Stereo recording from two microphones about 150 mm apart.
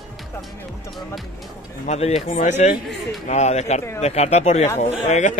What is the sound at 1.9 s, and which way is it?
Speech, 45° left (ahead or behind).